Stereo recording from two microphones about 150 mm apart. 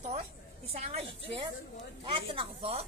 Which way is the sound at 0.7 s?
45° right (ahead or behind).